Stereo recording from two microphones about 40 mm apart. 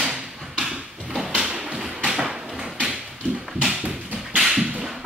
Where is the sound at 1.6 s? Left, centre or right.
Centre.